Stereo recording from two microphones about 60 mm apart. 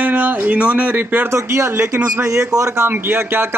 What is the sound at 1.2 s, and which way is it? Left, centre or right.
A man's voice, right.